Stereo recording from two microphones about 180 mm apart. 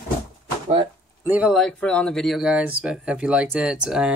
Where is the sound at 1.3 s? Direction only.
5° right (ahead or behind).